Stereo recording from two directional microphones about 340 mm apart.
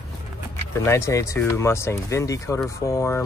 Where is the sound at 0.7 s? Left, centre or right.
Centre.